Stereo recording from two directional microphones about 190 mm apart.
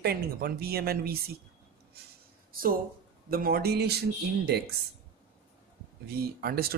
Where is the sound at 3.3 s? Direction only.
50° right (ahead or behind).